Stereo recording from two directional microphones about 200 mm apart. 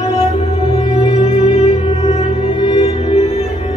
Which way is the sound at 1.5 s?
30° left (ahead or behind).